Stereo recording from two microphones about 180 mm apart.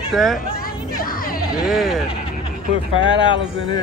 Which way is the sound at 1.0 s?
50° left (ahead or behind).